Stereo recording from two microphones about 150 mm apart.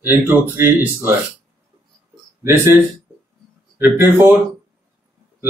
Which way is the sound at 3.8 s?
15° right (ahead or behind).